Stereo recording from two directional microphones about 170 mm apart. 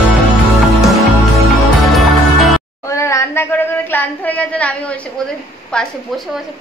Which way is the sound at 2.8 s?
15° left (ahead or behind).